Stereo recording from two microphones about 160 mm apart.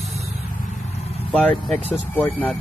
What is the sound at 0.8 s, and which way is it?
Vehicle, 45° left (ahead or behind).